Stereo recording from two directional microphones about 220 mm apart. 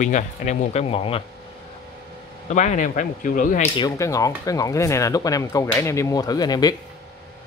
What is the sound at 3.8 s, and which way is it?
Speech, 15° left (ahead or behind).